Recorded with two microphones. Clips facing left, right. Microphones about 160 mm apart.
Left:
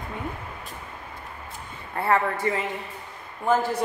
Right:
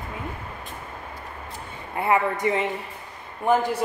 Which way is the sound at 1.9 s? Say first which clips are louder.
Right 1 dB; 15° right (ahead or behind).